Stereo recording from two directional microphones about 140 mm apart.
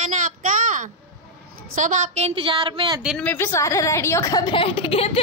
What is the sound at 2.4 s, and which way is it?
Speech, 40° right (ahead or behind).